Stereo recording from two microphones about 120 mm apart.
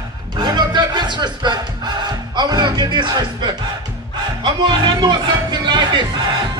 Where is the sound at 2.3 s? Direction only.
35° right (ahead or behind).